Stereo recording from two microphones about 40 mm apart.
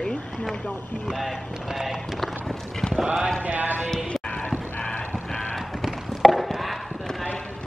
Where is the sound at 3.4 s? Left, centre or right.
Right.